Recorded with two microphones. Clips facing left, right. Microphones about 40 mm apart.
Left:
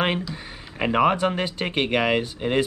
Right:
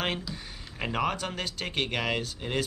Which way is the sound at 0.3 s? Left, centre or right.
Left.